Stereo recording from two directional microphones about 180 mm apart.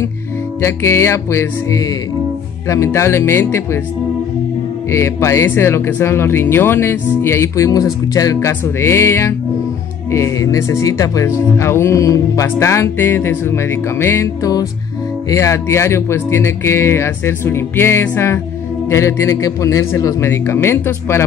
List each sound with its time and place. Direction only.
0.6 s speech: 15° left (ahead or behind)
4.9 s speech: 15° left (ahead or behind)